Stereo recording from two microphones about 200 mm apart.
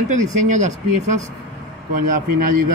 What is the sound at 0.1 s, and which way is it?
Speech, 40° right (ahead or behind).